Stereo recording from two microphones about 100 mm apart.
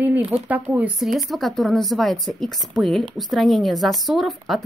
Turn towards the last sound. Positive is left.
turn(degrees=0)  # may be behind; listen again after turning